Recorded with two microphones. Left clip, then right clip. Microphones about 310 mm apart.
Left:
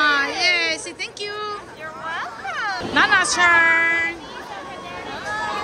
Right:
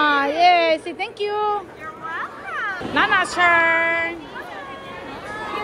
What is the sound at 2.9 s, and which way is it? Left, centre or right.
A woman's voice, centre.